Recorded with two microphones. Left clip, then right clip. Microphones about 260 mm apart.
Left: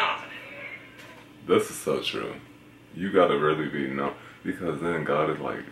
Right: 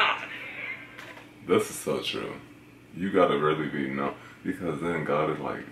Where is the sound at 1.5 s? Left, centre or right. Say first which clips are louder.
Left 2 dB; centre.